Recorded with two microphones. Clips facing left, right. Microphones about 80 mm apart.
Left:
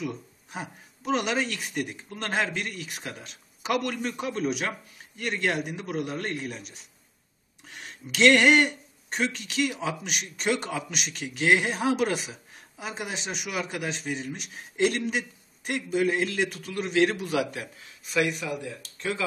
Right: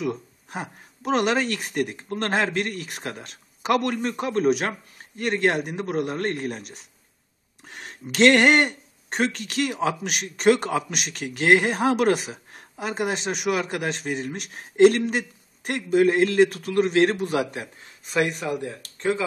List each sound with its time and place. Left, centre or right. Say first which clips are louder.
0.0 s speech: right 6 dB; right